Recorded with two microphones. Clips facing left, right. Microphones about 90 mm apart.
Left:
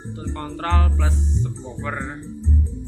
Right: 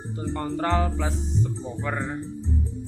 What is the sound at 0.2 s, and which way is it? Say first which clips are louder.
Speech: right 2 dB; 15° right (ahead or behind).